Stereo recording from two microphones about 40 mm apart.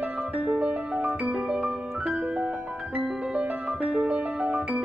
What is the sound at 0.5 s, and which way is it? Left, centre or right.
Music, right.